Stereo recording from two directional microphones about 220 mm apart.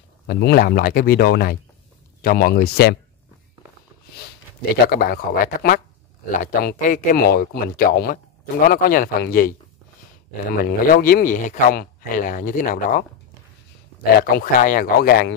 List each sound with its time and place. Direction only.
0.3 s speech: 45° left (ahead or behind)
4.8 s speech: 40° left (ahead or behind)
10.6 s speech: 40° left (ahead or behind)
14.2 s speech: 40° left (ahead or behind)